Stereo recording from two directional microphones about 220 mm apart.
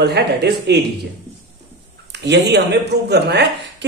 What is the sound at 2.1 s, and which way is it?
Speech, 50° right (ahead or behind).